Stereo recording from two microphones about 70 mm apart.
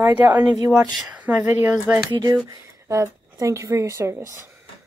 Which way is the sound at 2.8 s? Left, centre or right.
Right.